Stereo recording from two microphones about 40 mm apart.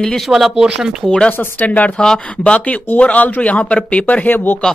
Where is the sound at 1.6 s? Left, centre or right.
Left.